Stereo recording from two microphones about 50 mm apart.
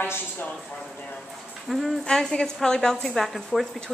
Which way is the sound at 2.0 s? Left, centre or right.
Centre.